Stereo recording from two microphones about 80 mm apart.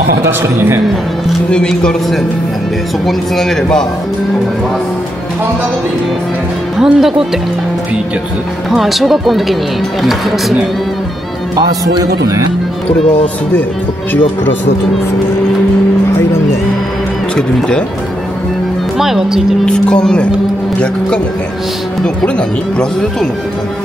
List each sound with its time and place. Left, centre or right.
0.2 s a man's voice: right
1.5 s a man's voice: centre
6.8 s speech: centre
8.6 s speech: centre
11.5 s speech: right
17.4 s a man's voice: centre
18.9 s speech: centre
19.6 s a man's voice: centre